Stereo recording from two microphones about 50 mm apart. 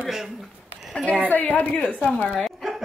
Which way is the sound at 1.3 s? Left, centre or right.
Left.